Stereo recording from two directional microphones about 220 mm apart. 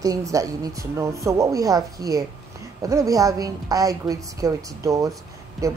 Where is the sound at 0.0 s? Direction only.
15° right (ahead or behind).